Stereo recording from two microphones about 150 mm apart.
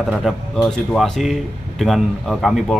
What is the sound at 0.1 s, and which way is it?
Speech, 5° left (ahead or behind).